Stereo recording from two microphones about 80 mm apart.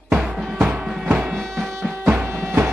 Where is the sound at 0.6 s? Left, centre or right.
Right.